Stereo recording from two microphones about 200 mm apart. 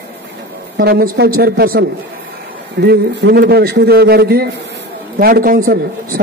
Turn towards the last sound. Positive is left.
turn(degrees=-45)  # may be behind; listen again after turning